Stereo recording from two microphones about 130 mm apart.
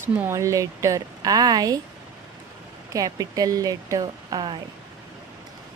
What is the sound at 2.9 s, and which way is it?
Speech, 25° right (ahead or behind).